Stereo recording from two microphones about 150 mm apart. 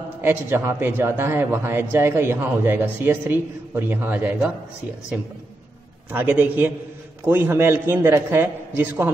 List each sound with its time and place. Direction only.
0.2 s a man's voice: 15° right (ahead or behind)
6.1 s a man's voice: 10° right (ahead or behind)